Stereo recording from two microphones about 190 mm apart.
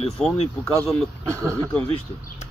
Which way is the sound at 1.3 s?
15° right (ahead or behind).